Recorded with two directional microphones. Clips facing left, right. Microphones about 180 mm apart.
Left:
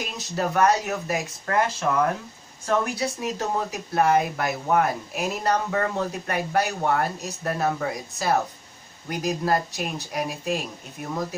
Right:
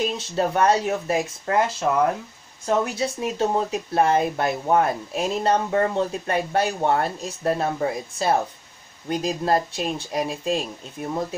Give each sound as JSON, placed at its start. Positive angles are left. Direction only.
{"t": 0.0, "sound": "speech", "side_deg": -30}